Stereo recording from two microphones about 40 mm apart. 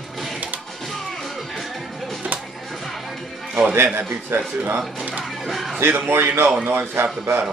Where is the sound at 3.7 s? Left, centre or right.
Right.